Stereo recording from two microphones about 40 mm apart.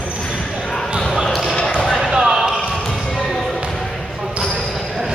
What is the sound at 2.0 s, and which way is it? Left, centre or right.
Basketball bounce, centre.